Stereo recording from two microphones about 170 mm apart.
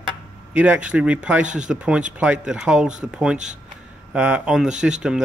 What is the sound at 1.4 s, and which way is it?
Speech, 45° right (ahead or behind).